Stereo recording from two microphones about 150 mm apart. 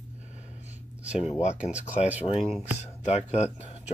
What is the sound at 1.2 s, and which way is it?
Speech, 45° left (ahead or behind).